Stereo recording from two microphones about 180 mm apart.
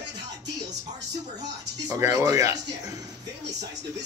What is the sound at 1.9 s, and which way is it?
Speech, 15° right (ahead or behind).